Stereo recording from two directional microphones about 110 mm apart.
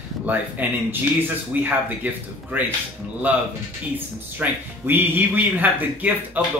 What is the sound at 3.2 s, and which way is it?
Speech, 15° right (ahead or behind).